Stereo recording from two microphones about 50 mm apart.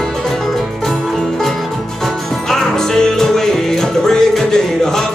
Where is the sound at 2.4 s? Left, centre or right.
Centre.